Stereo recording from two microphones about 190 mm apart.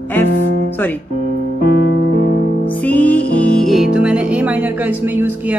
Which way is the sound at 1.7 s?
60° left (ahead or behind).